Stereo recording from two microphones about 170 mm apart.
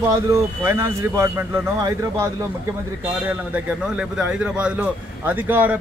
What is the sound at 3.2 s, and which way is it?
A man's voice, 5° right (ahead or behind).